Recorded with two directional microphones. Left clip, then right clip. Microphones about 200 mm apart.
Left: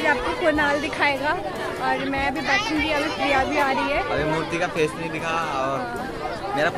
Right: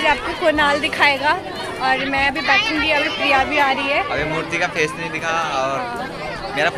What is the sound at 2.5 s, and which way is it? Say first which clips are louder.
Speech: right 5 dB; 60° left (ahead or behind).